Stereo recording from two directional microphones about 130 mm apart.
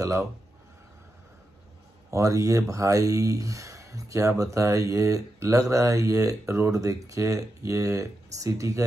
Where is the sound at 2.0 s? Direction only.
25° right (ahead or behind).